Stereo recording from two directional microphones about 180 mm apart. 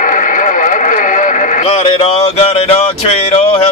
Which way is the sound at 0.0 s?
45° left (ahead or behind).